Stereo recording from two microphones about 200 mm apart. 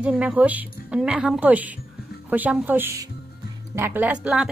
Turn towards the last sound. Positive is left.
turn(degrees=-5)  # may be behind; listen again after turning